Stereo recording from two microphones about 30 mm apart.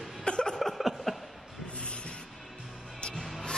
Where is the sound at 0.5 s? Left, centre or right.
Centre.